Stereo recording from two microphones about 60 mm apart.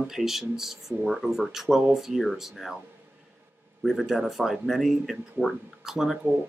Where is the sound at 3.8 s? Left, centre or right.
Centre.